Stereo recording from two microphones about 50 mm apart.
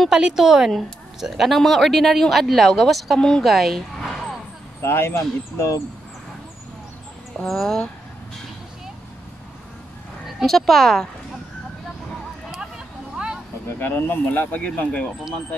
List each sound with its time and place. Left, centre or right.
0.1 s a woman's voice: centre
3.2 s a woman's voice: centre
3.4 s a sound: centre
4.8 s speech: left
7.4 s a woman's voice: centre
10.4 s a woman's voice: centre
12.4 s a sound: centre
13.7 s speech: left
14.2 s speech: left